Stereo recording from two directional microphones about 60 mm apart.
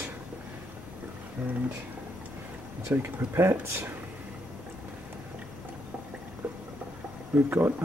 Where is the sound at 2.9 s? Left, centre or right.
Right.